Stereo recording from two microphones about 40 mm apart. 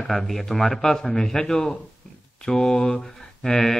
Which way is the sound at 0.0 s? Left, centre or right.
Centre.